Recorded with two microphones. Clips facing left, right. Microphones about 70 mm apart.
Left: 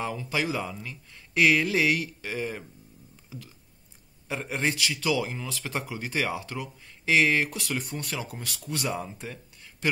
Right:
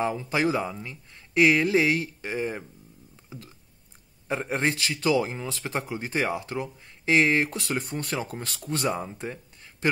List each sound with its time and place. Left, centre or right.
0.0 s speech: right
4.3 s speech: right